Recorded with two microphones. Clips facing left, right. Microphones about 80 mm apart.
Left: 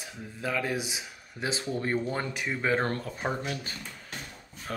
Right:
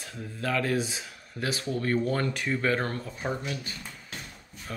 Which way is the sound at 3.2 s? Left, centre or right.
Left.